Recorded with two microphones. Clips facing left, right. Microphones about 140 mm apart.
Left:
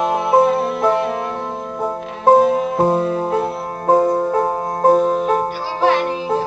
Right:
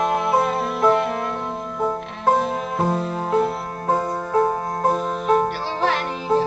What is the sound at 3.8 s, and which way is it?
Music, 30° left (ahead or behind).